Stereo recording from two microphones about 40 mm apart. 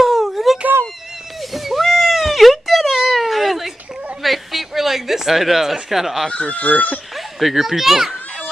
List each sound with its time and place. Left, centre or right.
0.0 s wail: centre
1.5 s a sound: centre
6.3 s speech: left
7.3 s a child's voice: centre